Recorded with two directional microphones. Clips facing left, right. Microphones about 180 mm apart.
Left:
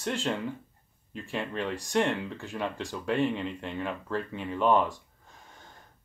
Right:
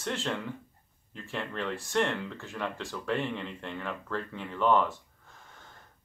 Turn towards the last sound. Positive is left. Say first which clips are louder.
# left 1 dB
turn(degrees=15)  # may be behind; listen again after turning